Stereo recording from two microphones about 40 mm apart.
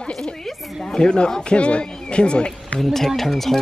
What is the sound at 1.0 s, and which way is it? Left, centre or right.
Speech, left.